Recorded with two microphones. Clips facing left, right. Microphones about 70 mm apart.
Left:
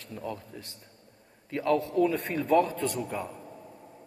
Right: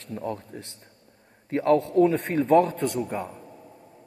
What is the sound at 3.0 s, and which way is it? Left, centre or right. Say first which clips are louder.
Speech: right 4 dB; right.